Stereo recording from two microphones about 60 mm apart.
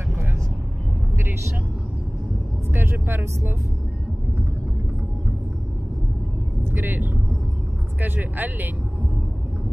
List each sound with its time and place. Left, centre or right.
2.7 s vehicle: right
6.7 s speech: right